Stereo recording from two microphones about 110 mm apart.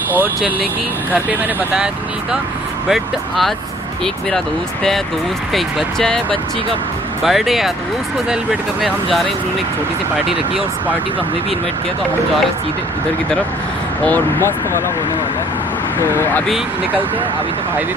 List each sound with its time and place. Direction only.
2.9 s speech: centre (ahead or behind)
5.5 s speech: centre (ahead or behind)
7.2 s speech: centre (ahead or behind)
8.8 s speech: centre (ahead or behind)
14.0 s speech: 20° left (ahead or behind)
16.0 s speech: 25° left (ahead or behind)